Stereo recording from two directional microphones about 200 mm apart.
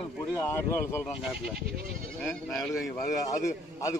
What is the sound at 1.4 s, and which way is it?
Speech, 50° right (ahead or behind).